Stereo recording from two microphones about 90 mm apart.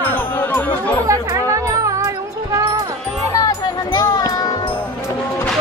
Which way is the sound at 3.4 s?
45° left (ahead or behind).